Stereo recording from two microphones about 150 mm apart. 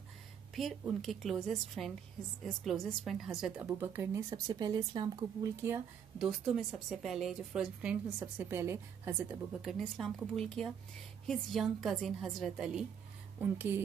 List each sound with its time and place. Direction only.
0.6 s a woman's voice: centre (ahead or behind)
3.6 s speech: 15° right (ahead or behind)
5.6 s a woman's voice: 15° right (ahead or behind)
6.2 s a woman's voice: 5° right (ahead or behind)
8.4 s a woman's voice: 15° right (ahead or behind)
9.6 s a woman's voice: centre (ahead or behind)
13.4 s a woman's voice: 15° right (ahead or behind)